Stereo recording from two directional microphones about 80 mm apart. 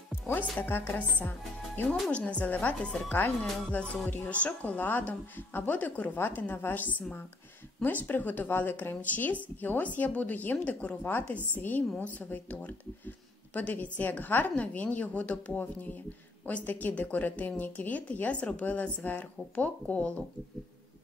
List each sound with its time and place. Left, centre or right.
0.6 s speech: left
1.9 s speech: centre